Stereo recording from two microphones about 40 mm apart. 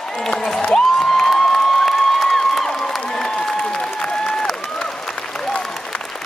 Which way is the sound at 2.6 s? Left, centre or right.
Centre.